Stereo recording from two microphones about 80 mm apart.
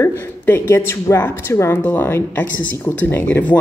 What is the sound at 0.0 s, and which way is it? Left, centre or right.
A woman's voice, left.